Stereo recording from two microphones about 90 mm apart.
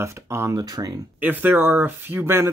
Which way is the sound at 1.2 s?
20° right (ahead or behind).